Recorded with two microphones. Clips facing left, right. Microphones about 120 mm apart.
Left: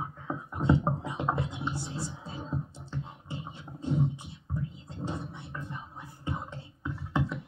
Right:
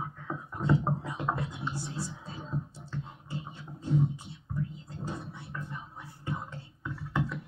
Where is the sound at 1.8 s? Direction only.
25° left (ahead or behind).